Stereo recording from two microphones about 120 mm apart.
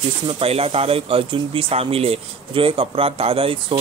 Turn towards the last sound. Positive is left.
turn(degrees=-50)  # may be behind; listen again after turning